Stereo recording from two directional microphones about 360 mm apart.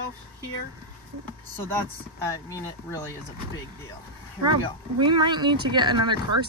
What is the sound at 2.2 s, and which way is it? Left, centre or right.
Speech, centre.